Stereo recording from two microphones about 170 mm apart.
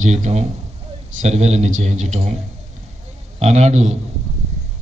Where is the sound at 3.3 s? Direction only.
40° right (ahead or behind).